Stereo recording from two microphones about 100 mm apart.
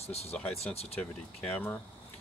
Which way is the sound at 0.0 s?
90° left.